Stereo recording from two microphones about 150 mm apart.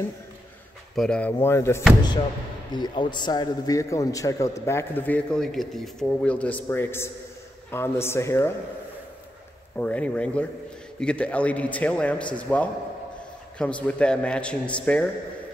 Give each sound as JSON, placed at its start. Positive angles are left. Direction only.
{"t": 0.9, "sound": "a man's voice", "side_deg": 5}
{"t": 2.7, "sound": "a man's voice", "side_deg": 30}
{"t": 9.8, "sound": "a man's voice", "side_deg": 10}